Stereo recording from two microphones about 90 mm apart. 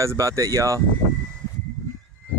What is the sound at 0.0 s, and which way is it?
Speech, 35° right (ahead or behind).